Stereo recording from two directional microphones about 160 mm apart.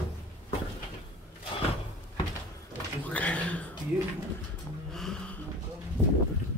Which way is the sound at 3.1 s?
10° left (ahead or behind).